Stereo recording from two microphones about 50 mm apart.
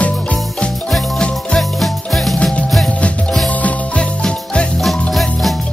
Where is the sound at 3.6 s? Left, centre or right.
Left.